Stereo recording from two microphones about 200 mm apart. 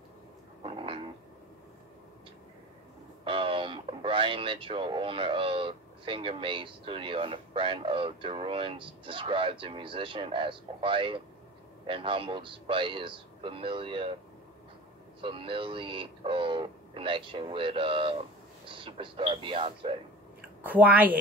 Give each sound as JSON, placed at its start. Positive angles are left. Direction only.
{"t": 0.7, "sound": "a sound", "side_deg": -25}
{"t": 3.3, "sound": "speech", "side_deg": -25}
{"t": 15.2, "sound": "speech", "side_deg": -25}
{"t": 20.6, "sound": "a woman's voice", "side_deg": -10}